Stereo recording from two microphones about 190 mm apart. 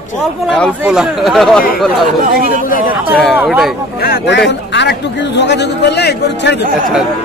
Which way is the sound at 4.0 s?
55° left (ahead or behind).